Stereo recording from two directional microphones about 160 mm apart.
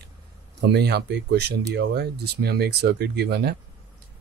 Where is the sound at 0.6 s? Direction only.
90° right.